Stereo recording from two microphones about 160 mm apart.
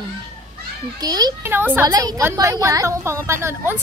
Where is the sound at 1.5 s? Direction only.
10° right (ahead or behind).